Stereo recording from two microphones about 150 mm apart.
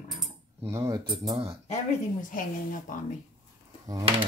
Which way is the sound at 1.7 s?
60° left (ahead or behind).